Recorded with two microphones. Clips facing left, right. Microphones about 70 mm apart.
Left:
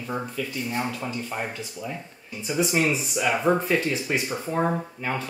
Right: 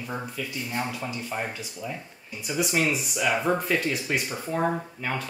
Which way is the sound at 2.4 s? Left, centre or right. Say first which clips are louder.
Left 2 dB; left.